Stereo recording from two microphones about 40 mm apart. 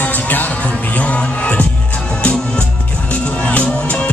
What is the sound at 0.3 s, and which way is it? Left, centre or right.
Music, left.